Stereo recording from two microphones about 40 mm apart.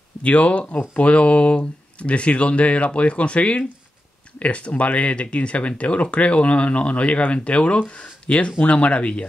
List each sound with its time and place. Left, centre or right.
0.2 s speech: left